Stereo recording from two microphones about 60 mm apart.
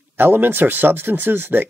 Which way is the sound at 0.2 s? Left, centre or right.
Right.